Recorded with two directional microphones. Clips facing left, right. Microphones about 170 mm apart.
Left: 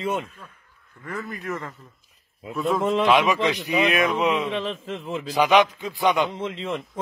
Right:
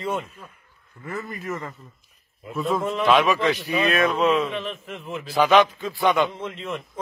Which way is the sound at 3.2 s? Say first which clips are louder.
Right 1 dB; 15° left (ahead or behind).